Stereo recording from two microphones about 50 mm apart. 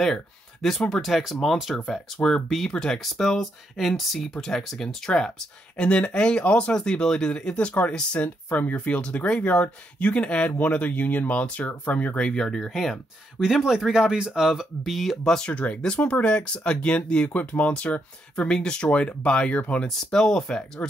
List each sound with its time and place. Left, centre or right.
0.0 s speech: centre
2.2 s speech: left
2.5 s speech: centre; by 12.2 s left
12.2 s speech: centre
12.7 s speech: centre
14.8 s speech: centre
15.4 s speech: left
17.3 s speech: left
20.1 s speech: centre